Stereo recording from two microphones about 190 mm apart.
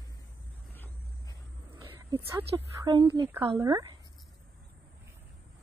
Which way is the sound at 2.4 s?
30° right (ahead or behind).